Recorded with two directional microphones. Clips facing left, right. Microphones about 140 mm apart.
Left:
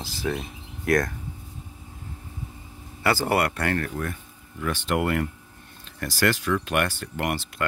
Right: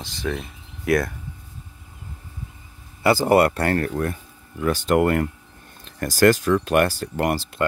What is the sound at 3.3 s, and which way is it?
Speech, 30° right (ahead or behind).